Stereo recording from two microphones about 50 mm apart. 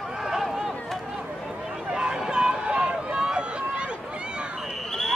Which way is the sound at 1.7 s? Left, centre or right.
Centre.